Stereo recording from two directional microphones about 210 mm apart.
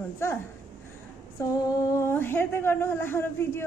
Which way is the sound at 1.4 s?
15° left (ahead or behind).